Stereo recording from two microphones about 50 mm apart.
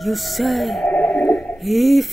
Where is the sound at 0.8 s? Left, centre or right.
Left.